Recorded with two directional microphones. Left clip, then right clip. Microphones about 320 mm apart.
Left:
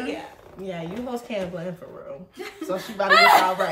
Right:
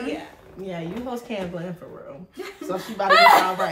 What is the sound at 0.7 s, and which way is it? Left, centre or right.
A woman's voice, centre.